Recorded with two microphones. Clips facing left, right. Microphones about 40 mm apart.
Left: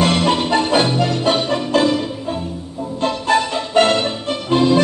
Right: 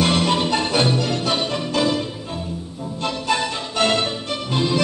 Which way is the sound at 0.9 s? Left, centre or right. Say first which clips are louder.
Left 4 dB; left.